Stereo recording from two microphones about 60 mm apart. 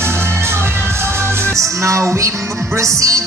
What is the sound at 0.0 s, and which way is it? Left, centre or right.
Music, right.